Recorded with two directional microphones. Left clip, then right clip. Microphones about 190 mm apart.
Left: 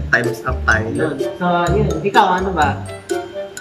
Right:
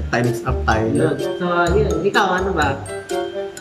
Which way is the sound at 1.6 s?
5° left (ahead or behind).